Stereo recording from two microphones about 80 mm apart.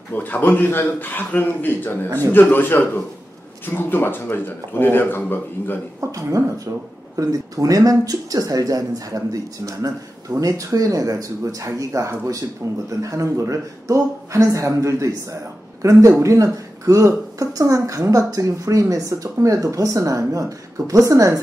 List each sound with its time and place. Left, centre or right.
0.1 s a man's voice: left
5.9 s speech: right